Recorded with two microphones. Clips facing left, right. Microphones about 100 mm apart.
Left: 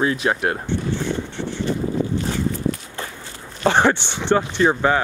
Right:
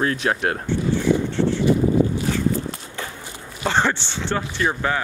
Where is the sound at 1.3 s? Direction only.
15° left (ahead or behind).